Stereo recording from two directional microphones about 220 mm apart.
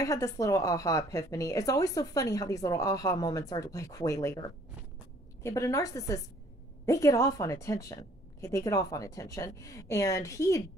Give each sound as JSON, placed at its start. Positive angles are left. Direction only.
{"t": 0.0, "sound": "a woman's voice", "side_deg": 15}